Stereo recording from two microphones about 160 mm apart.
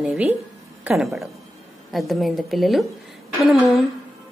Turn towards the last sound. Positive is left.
turn(degrees=0)  # may be behind; listen again after turning